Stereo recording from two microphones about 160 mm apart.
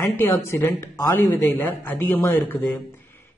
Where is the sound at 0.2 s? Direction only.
15° left (ahead or behind).